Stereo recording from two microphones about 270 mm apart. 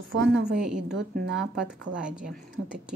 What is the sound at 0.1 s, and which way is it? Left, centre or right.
Speech, right.